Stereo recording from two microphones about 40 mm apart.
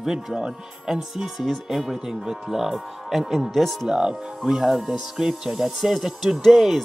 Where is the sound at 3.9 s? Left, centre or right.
Centre.